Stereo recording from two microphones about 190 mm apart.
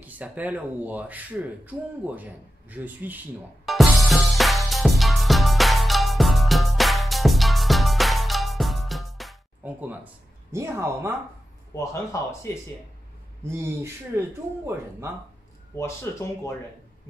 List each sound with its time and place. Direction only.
0.0 s speech: 10° right (ahead or behind)
3.6 s music: centre (ahead or behind)
10.5 s speech: 15° right (ahead or behind)
11.7 s speech: 15° left (ahead or behind)
13.4 s speech: 15° right (ahead or behind)
15.7 s speech: 15° left (ahead or behind)